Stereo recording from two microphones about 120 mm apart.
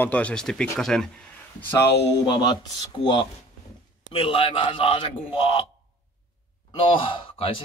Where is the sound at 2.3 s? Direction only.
35° left (ahead or behind).